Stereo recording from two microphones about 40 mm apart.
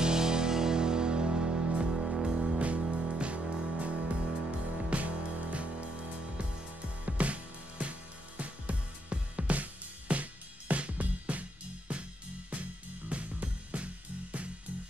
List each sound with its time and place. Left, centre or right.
0.0 s music: centre; by 5.9 s right
7.1 s music: right
13.1 s music: right